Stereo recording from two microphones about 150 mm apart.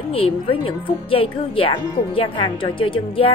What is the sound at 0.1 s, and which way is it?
A woman's voice, 40° left (ahead or behind).